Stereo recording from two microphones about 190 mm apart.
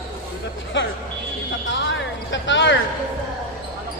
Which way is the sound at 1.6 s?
75° left (ahead or behind).